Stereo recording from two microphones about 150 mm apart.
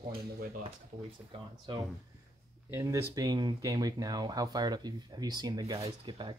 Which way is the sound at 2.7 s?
20° right (ahead or behind).